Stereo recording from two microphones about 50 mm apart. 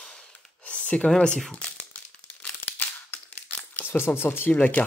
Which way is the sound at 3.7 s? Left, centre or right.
Left.